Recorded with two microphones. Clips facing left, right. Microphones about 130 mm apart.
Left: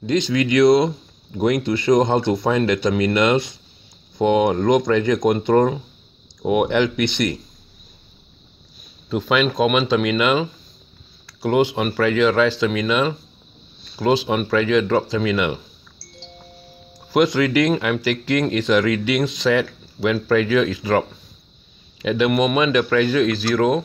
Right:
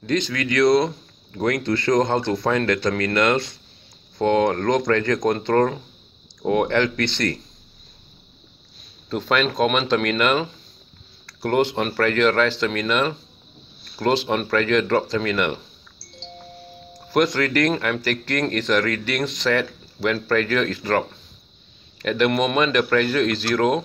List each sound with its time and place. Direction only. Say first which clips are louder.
0.0 s speech: left 4 dB; 20° left (ahead or behind)
9.1 s speech: left 2 dB; 5° left (ahead or behind)
17.1 s speech: left 3 dB; 10° left (ahead or behind)